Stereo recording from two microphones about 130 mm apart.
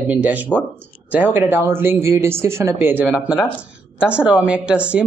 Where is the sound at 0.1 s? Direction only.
10° right (ahead or behind).